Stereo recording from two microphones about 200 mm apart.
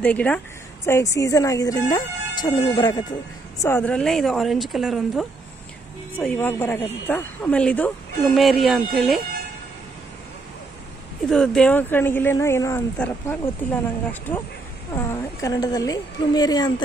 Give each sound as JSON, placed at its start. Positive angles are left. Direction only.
{"t": 0.0, "sound": "speech", "side_deg": 5}
{"t": 6.1, "sound": "speech", "side_deg": 10}
{"t": 11.2, "sound": "speech", "side_deg": 5}
{"t": 15.0, "sound": "a woman's voice", "side_deg": 15}